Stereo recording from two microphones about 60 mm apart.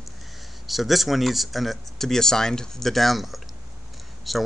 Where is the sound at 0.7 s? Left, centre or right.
Centre.